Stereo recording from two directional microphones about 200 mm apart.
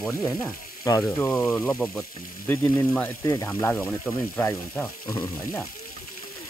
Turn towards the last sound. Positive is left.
turn(degrees=15)  # may be behind; listen again after turning